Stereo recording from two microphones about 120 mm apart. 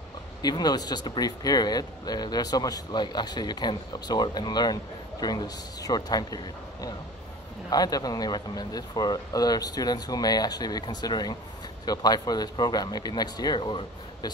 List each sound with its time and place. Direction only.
0.4 s speech: 35° left (ahead or behind)